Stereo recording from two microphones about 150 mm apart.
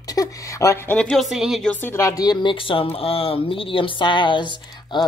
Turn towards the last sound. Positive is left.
turn(degrees=30)  # may be behind; listen again after turning